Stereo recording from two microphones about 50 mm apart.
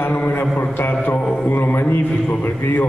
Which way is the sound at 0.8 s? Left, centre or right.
Left.